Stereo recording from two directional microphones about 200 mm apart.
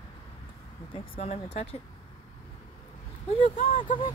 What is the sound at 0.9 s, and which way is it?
Speech, 30° left (ahead or behind).